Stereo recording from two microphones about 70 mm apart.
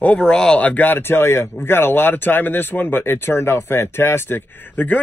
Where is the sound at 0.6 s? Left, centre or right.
Left.